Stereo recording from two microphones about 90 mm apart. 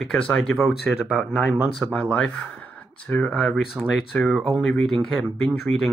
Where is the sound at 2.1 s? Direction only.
10° left (ahead or behind).